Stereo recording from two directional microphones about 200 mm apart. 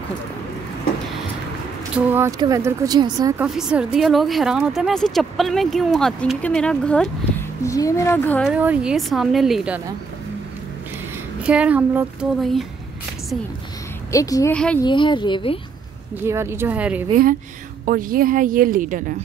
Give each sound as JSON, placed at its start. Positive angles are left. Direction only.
{"t": 2.0, "sound": "a woman's voice", "side_deg": -10}
{"t": 3.4, "sound": "speech", "side_deg": 0}
{"t": 7.6, "sound": "speech", "side_deg": 15}
{"t": 8.5, "sound": "speech", "side_deg": -5}
{"t": 11.4, "sound": "a woman's voice", "side_deg": -5}
{"t": 14.1, "sound": "speech", "side_deg": 15}
{"t": 14.5, "sound": "speech", "side_deg": 5}
{"t": 14.8, "sound": "a woman's voice", "side_deg": 25}
{"t": 16.3, "sound": "a woman's voice", "side_deg": -15}
{"t": 17.8, "sound": "speech", "side_deg": -45}